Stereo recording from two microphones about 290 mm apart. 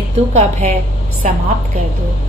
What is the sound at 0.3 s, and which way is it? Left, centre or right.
Speech, right.